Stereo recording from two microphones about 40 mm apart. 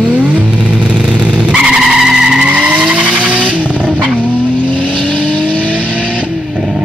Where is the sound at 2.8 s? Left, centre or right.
Centre.